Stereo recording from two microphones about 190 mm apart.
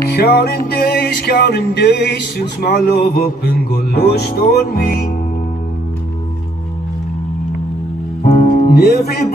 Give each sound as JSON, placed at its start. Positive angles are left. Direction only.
{"t": 0.1, "sound": "music", "side_deg": 55}
{"t": 8.2, "sound": "music", "side_deg": 45}